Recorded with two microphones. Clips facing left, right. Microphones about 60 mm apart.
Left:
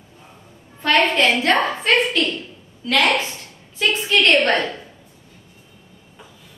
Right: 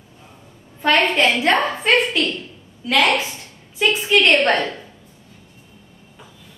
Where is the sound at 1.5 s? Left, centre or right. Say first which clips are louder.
Even; centre.